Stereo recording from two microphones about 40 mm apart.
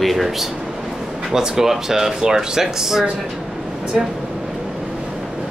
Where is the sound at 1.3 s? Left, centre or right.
Centre.